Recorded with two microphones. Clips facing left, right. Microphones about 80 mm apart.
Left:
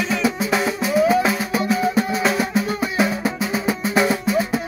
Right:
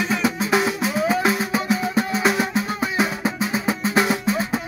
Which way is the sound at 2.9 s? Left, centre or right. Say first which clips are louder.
Left 2 dB; right.